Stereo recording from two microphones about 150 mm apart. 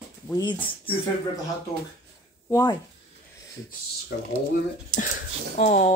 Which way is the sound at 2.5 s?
20° left (ahead or behind).